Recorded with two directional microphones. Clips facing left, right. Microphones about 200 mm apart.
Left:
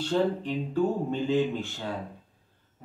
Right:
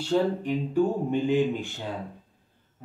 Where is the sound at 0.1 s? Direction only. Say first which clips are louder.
Right 3 dB; 10° right (ahead or behind).